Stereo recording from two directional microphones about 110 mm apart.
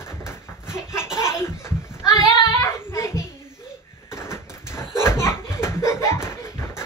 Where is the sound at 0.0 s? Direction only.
25° left (ahead or behind).